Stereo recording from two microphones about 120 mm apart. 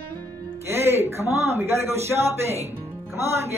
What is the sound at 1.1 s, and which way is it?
Speech, 20° right (ahead or behind).